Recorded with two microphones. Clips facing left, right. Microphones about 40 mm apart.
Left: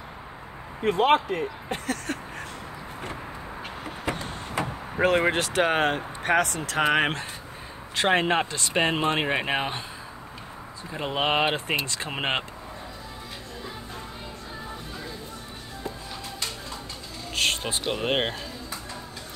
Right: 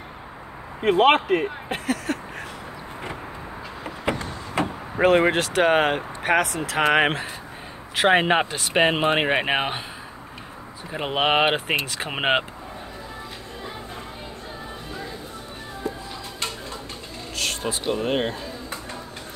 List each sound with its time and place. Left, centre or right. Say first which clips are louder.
0.9 s speech: right 4 dB; right
1.9 s a sound: right 6 dB; centre
3.8 s a sound: right 5 dB; right
4.9 s speech: right 4 dB; centre; by 9.8 s right
10.9 s speech: right 4 dB; right
17.4 s speech: left 1 dB; left